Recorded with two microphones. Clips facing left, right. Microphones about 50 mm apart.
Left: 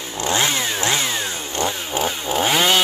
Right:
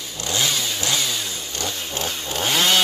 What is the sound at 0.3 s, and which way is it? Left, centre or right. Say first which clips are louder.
Chainsaw: left 3 dB; left.